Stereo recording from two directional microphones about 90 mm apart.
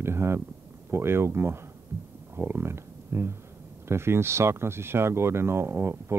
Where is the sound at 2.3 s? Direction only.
25° right (ahead or behind).